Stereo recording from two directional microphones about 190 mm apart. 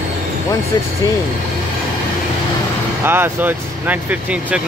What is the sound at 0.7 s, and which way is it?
Speech, 20° left (ahead or behind).